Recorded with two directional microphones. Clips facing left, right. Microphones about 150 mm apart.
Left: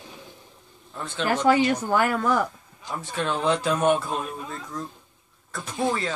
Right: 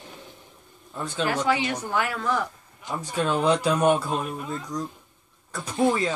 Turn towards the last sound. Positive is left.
turn(degrees=-15)  # may be behind; listen again after turning